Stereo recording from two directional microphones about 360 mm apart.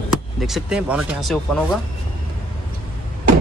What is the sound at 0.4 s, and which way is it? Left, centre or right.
Speech, centre.